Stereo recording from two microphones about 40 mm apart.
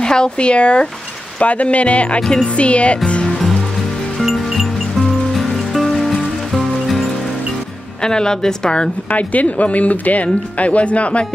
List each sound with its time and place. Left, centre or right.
0.0 s a woman's voice: centre
3.3 s music: centre
8.0 s a woman's voice: centre
9.1 s speech: left